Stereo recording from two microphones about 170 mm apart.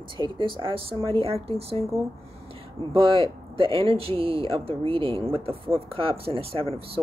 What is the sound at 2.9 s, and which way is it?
Speech, 30° right (ahead or behind).